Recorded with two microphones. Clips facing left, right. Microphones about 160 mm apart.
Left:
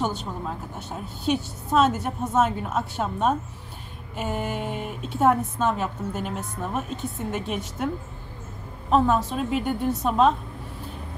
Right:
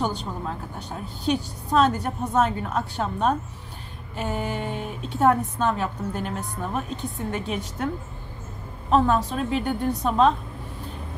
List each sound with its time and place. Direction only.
0.7 s a woman's voice: 5° left (ahead or behind)
8.9 s a woman's voice: centre (ahead or behind)